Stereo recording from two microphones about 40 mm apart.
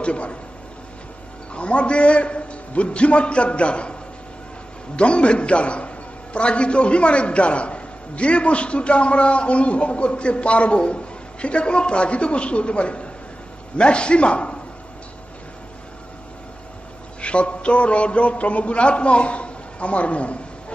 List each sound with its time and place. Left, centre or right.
0.0 s a man's voice: left
1.5 s a man's voice: left
4.9 s a man's voice: left
17.2 s a man's voice: left